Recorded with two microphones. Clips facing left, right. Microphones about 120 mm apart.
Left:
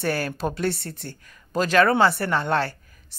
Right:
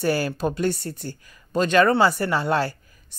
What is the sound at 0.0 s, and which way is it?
Speech, centre (ahead or behind).